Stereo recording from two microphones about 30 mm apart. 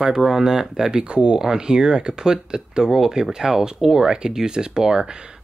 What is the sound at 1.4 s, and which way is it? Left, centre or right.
Speech, right.